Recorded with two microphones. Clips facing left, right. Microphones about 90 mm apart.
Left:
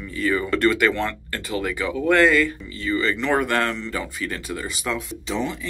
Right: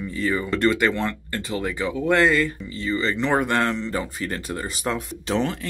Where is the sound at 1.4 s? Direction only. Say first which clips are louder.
Left 1 dB; 30° right (ahead or behind).